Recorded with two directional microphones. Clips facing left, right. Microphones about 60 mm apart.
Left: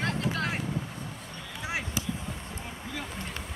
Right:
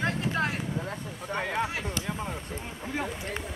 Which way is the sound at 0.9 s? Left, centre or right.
Right.